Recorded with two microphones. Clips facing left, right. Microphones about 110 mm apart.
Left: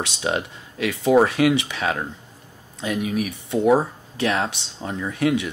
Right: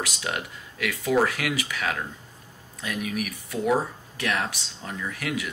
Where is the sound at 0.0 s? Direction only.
25° left (ahead or behind).